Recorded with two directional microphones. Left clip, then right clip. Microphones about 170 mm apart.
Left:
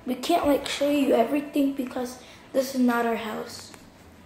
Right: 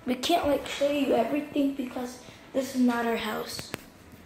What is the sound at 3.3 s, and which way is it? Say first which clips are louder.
Speech: right 1 dB; centre (ahead or behind).